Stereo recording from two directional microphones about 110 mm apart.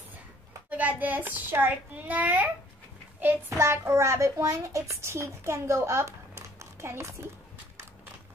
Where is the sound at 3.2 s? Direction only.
20° right (ahead or behind).